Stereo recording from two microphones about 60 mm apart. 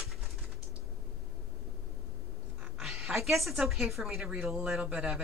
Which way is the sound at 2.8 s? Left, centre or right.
Centre.